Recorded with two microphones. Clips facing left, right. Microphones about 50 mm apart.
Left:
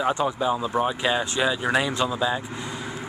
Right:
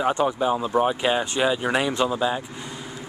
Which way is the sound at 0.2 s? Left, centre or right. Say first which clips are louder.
Right 2 dB; centre.